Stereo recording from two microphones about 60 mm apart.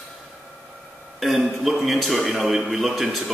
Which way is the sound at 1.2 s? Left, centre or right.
Centre.